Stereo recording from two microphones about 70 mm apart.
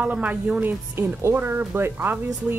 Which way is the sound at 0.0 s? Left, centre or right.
Centre.